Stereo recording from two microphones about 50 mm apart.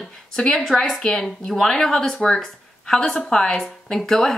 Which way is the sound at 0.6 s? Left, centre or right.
Centre.